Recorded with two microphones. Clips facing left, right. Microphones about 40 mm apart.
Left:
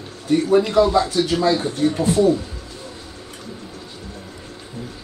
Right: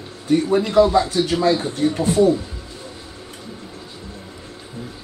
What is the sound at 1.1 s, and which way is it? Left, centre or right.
Speech, right.